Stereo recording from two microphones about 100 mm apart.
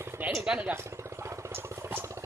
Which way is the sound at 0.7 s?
30° right (ahead or behind).